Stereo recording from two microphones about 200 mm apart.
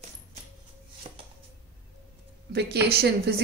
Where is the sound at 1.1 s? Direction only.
30° right (ahead or behind).